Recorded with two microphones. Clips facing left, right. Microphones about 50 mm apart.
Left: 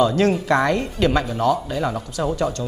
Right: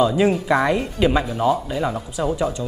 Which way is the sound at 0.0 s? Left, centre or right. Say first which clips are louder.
Even; centre.